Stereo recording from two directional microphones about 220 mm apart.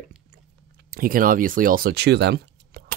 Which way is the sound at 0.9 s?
40° right (ahead or behind).